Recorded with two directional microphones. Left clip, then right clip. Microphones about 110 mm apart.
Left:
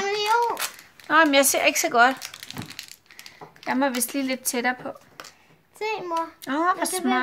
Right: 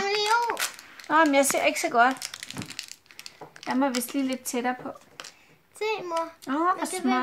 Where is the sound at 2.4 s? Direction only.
45° left (ahead or behind).